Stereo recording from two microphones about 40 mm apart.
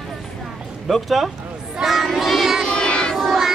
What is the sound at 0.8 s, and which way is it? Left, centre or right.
Speech, centre.